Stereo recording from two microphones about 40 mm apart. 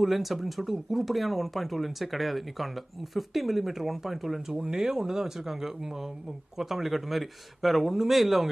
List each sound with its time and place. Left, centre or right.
0.0 s speech: centre